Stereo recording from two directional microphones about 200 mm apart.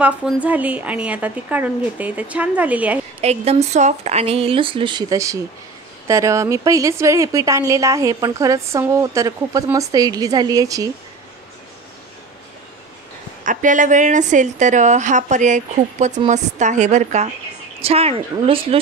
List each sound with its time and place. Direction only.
0.0 s a woman's voice: 5° right (ahead or behind)
3.2 s a woman's voice: 30° right (ahead or behind)
13.5 s a woman's voice: 40° right (ahead or behind)